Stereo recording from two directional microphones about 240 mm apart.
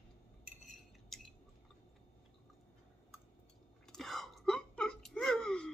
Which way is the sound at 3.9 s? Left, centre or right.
Centre.